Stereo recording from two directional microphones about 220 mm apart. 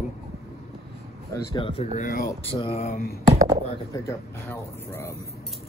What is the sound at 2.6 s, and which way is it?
Speech, 25° left (ahead or behind).